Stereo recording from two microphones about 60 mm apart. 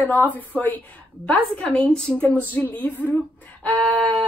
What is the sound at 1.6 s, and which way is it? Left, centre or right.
Speech, centre.